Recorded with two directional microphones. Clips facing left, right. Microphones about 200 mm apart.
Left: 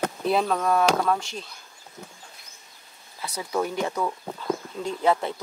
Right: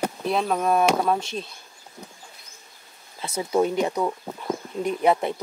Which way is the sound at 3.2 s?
25° right (ahead or behind).